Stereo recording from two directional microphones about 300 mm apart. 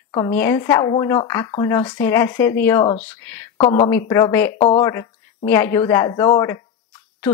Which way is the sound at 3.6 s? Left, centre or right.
Centre.